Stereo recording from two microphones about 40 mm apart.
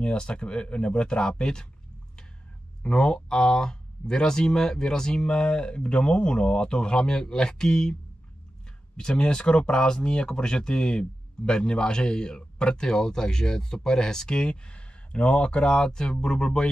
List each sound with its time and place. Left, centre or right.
0.0 s speech: left
2.8 s speech: centre
8.9 s speech: left